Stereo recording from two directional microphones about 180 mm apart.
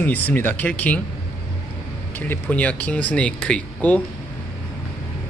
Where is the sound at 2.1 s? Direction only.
10° left (ahead or behind).